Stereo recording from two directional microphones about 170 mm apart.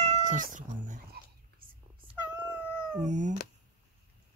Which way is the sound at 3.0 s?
45° right (ahead or behind).